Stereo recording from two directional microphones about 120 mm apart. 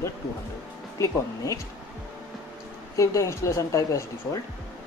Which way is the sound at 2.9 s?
25° left (ahead or behind).